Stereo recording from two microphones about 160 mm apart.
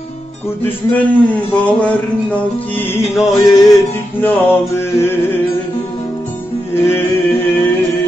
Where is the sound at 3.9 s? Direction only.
15° left (ahead or behind).